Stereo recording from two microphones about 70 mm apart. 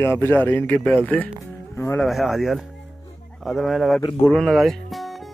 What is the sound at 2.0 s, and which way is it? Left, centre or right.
Speech, centre.